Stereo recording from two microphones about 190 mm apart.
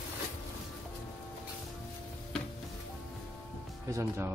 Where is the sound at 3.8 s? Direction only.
15° right (ahead or behind).